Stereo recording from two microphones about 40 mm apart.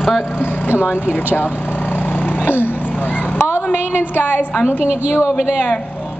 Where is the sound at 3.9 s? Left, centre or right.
Left.